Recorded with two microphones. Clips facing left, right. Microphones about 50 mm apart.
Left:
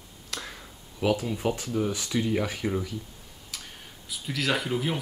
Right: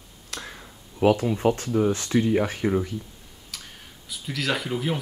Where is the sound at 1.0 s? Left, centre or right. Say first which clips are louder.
Right 6 dB; right.